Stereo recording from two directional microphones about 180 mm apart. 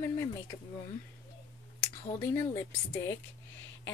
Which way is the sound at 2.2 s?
15° left (ahead or behind).